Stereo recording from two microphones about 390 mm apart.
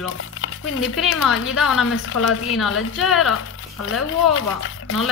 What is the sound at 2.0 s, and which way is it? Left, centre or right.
Speech, left.